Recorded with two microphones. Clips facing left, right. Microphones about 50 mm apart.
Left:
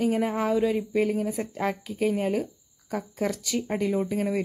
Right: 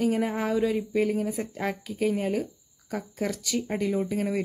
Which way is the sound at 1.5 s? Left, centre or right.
Left.